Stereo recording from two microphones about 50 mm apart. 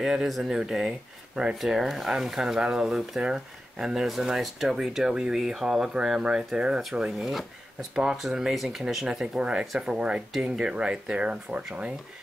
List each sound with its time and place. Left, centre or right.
0.0 s speech: centre
1.6 s speech: centre
7.0 s speech: centre
7.9 s speech: centre